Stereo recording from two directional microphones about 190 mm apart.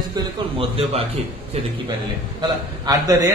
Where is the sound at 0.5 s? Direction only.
30° right (ahead or behind).